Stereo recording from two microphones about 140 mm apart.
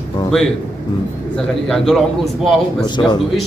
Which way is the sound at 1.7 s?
5° left (ahead or behind).